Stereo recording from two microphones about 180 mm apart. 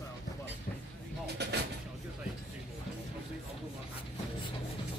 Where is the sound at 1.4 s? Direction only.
65° right (ahead or behind).